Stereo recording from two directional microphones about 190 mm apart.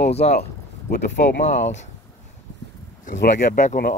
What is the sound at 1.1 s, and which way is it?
Speech, 60° left (ahead or behind).